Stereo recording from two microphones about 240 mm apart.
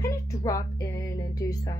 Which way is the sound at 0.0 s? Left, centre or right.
Centre.